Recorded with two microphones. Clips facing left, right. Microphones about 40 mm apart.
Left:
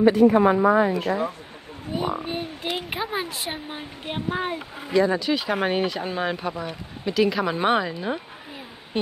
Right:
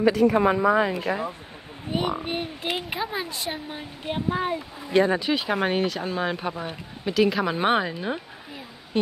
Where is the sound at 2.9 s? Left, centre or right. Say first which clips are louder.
Left 1 dB; centre.